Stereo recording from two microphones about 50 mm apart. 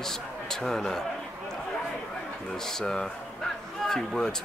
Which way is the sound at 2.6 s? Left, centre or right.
Centre.